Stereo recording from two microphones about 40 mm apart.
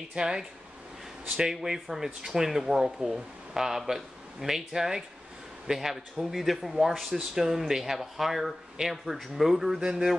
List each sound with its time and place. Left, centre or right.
0.1 s speech: centre